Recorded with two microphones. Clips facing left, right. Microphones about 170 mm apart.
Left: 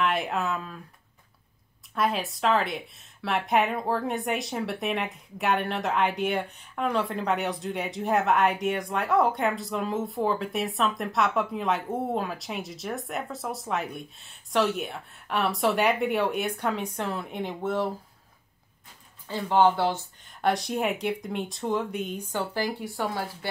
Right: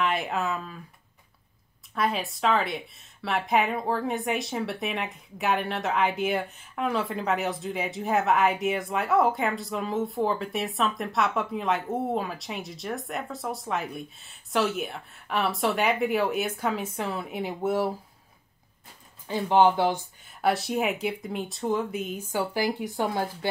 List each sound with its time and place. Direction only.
0.0 s speech: centre (ahead or behind)
2.0 s speech: centre (ahead or behind)
19.2 s speech: 15° right (ahead or behind)